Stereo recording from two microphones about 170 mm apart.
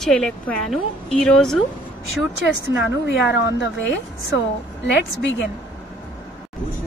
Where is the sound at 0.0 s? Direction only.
5° left (ahead or behind).